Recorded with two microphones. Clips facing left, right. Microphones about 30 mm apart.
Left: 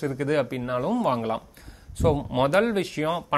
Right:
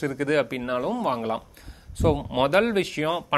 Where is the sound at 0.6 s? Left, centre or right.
Right.